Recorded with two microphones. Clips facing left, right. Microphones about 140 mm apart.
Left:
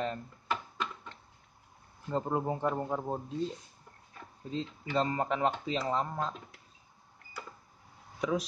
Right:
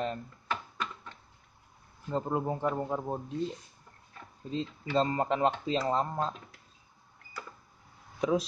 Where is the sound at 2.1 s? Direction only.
10° left (ahead or behind).